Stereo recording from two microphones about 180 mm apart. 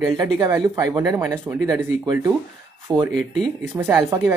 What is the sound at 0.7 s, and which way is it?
Speech, 20° right (ahead or behind).